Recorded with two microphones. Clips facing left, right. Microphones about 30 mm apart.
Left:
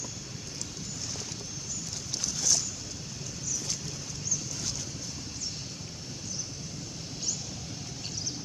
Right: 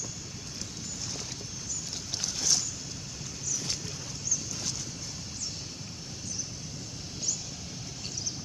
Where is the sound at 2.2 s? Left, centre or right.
Centre.